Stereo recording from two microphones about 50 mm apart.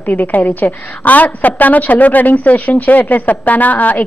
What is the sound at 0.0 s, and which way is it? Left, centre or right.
Speech, left.